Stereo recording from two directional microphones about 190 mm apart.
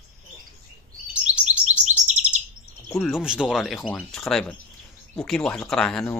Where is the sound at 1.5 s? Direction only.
35° right (ahead or behind).